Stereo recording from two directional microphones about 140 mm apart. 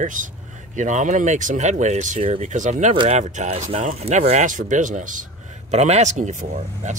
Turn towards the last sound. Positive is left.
turn(degrees=-60)  # may be behind; listen again after turning